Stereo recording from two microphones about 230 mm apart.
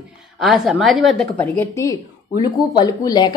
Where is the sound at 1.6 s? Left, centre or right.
Centre.